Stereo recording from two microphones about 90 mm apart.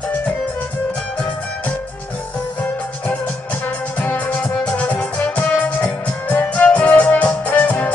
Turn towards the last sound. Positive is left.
turn(degrees=15)  # may be behind; listen again after turning